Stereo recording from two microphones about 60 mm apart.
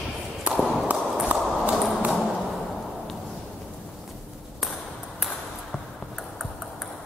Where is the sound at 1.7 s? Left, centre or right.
Centre.